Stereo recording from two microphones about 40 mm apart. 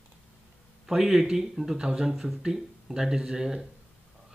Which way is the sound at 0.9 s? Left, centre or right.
Centre.